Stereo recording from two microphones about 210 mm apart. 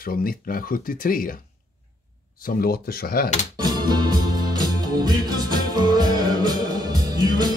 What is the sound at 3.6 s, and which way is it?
Music, 20° right (ahead or behind).